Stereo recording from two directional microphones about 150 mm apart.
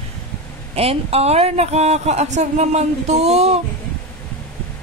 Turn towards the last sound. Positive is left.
turn(degrees=-45)  # may be behind; listen again after turning